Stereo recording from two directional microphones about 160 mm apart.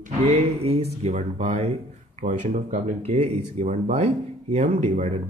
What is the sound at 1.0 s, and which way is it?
Speech, 45° right (ahead or behind).